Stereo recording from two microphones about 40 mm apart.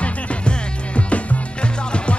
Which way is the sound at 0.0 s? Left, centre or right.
Left.